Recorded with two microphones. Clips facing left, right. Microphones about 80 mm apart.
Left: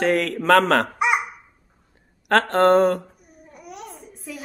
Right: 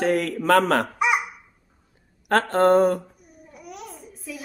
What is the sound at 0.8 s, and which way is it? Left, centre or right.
Babbling, centre.